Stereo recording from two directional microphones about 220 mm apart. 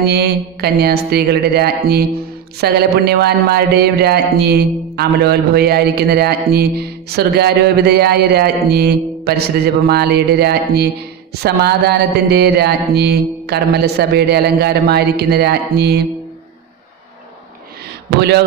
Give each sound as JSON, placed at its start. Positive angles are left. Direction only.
{"t": 0.0, "sound": "speech", "side_deg": -45}